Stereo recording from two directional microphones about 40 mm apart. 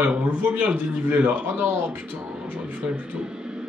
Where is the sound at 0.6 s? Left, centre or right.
Right.